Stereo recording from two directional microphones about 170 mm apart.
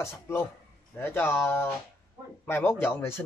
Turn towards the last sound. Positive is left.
turn(degrees=15)  # may be behind; listen again after turning